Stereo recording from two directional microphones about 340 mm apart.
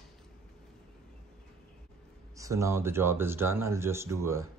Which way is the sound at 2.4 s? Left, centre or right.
Centre.